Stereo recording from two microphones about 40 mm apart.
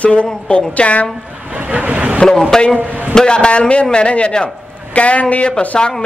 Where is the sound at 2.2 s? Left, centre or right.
Centre.